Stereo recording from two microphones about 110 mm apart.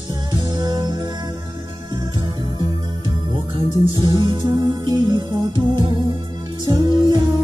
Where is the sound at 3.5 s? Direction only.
45° right (ahead or behind).